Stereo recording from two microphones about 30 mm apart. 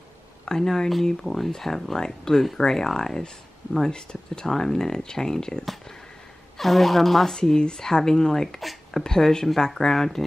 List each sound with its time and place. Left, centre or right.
0.5 s speech: centre
6.6 s speech: centre
7.3 s speech: left
8.5 s a sound: centre
9.0 s speech: left